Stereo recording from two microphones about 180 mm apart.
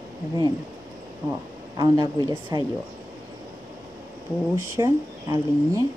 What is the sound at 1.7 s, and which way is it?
Speech, 20° right (ahead or behind).